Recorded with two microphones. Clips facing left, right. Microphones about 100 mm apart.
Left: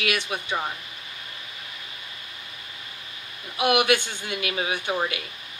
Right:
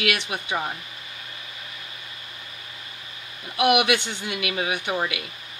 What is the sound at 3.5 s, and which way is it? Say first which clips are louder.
Speech: right 1 dB; 65° right (ahead or behind).